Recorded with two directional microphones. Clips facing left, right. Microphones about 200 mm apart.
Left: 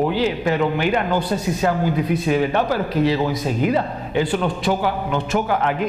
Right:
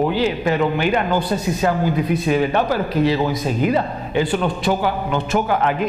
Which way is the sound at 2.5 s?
15° right (ahead or behind).